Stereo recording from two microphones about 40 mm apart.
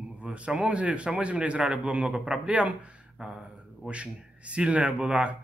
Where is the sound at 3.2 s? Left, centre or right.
Centre.